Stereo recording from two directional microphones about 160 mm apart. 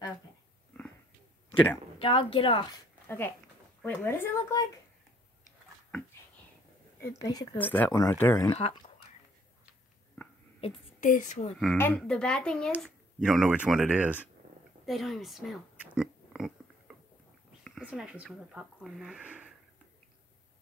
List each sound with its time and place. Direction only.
2.0 s a woman's voice: 35° left (ahead or behind)
3.1 s speech: 15° left (ahead or behind)
7.0 s speech: 20° left (ahead or behind)
7.5 s speech: 10° left (ahead or behind)
8.5 s a woman's voice: 40° left (ahead or behind)
10.2 s a sound: 10° left (ahead or behind)
10.6 s speech: 35° left (ahead or behind)
11.0 s speech: 55° left (ahead or behind)
11.7 s speech: 10° left (ahead or behind); by 14.2 s 10° right (ahead or behind)
14.9 s oink: centre (ahead or behind)
17.8 s speech: 10° right (ahead or behind)